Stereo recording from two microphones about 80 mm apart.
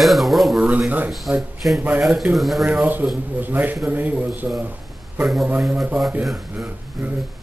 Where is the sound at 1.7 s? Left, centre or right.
Right.